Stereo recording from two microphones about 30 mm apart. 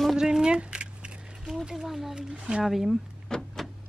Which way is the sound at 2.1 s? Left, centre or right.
Right.